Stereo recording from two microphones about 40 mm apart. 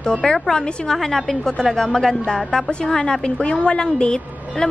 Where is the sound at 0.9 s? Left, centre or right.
Centre.